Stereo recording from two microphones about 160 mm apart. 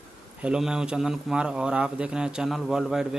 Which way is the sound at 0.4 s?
5° right (ahead or behind).